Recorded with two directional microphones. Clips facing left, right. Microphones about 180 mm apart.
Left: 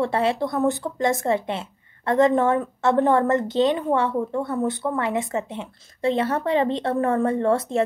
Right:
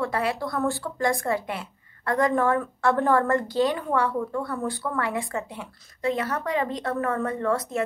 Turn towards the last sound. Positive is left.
turn(degrees=30)  # may be behind; listen again after turning